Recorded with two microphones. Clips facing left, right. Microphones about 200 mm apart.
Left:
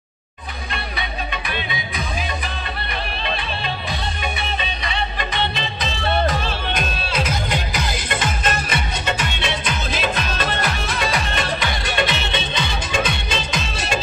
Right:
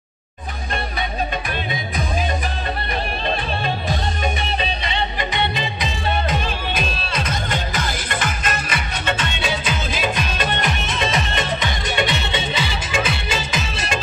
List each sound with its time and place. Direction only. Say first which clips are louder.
3.3 s music: right 4 dB; 40° right (ahead or behind); by 5.9 s 15° right (ahead or behind)
6.7 s music: even; centre (ahead or behind)
9.4 s music: right 1 dB; centre (ahead or behind)
9.9 s music: left 1 dB; 15° right (ahead or behind)